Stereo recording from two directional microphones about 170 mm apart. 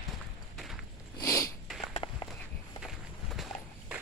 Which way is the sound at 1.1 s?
20° left (ahead or behind).